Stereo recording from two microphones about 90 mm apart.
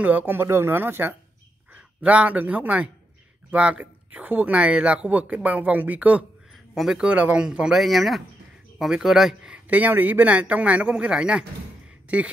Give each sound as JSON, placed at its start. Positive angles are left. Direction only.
{"t": 0.0, "sound": "a man's voice", "side_deg": -20}
{"t": 6.5, "sound": "speech", "side_deg": 0}